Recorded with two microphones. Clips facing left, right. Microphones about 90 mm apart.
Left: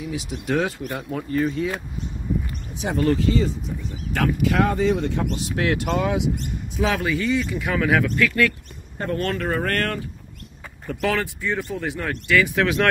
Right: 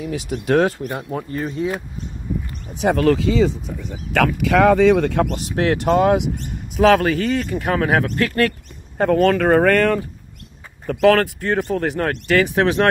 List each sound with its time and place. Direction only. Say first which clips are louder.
0.0 s speech: right 4 dB; 55° right (ahead or behind)
0.8 s speech: right 2 dB; 30° right (ahead or behind)
2.7 s speech: right 9 dB; 55° right (ahead or behind)
3.0 s speech: right 2 dB; 90° right; by 5.3 s 70° right (ahead or behind)
5.3 s speech: right 4 dB; 40° right (ahead or behind)
6.8 s speech: right 8 dB; 65° right (ahead or behind); by 8.5 s 40° right (ahead or behind)
8.9 s speech: right 10 dB; 90° right
10.9 s speech: right 9 dB; 50° right (ahead or behind)
12.3 s speech: right 2 dB; 40° right (ahead or behind)